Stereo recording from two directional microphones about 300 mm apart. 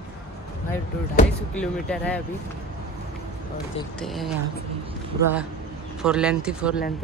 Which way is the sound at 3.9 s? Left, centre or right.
Centre.